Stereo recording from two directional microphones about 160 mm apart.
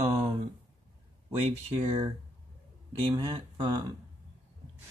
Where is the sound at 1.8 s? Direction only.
35° right (ahead or behind).